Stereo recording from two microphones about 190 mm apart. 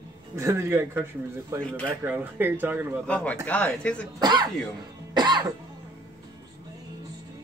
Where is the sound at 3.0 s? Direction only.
5° left (ahead or behind).